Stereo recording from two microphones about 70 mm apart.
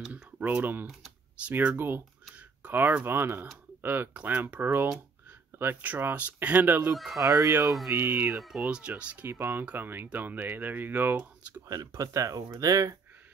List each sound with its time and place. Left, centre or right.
0.1 s typing: right
1.5 s speech: right
5.8 s speech: right
7.2 s speech: right
7.9 s speech: right
8.4 s speech: centre
8.6 s speech: centre
9.3 s speech: right
11.9 s speech: right